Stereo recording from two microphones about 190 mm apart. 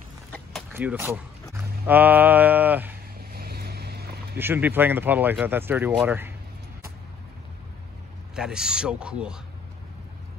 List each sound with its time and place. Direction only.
0.3 s a sound: 5° left (ahead or behind)
0.7 s speech: 10° right (ahead or behind)
3.2 s vehicle: 55° right (ahead or behind)
4.4 s speech: 10° right (ahead or behind)
8.4 s a man's voice: 5° right (ahead or behind)